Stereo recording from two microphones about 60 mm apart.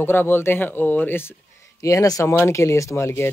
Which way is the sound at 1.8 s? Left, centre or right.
Left.